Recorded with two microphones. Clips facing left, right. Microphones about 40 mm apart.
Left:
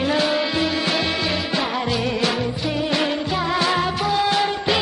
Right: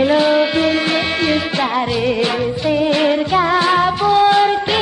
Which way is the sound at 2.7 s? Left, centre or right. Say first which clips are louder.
Right 8 dB; right.